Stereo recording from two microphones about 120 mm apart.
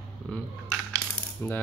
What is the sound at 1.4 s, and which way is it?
Speech, 15° left (ahead or behind).